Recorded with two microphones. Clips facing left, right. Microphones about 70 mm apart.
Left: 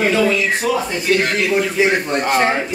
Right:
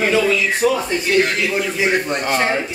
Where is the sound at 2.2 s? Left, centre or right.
Centre.